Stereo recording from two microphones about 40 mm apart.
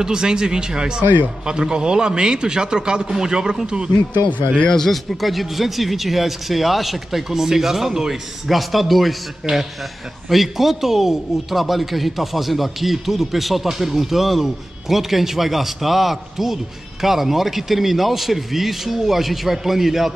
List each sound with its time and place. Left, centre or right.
0.0 s a man's voice: centre
4.7 s a man's voice: centre